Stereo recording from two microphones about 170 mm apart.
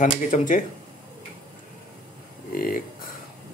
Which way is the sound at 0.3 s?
50° left (ahead or behind).